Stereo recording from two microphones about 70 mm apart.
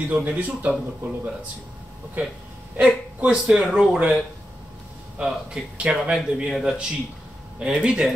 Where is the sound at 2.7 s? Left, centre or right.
Right.